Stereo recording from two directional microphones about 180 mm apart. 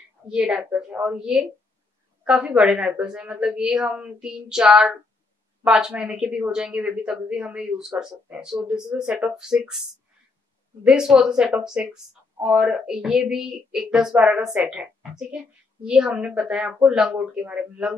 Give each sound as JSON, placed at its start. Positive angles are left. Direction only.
{"t": 0.3, "sound": "speech", "side_deg": -5}